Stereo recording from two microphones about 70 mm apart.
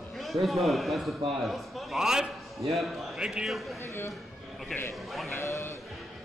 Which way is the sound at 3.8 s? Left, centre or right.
Left.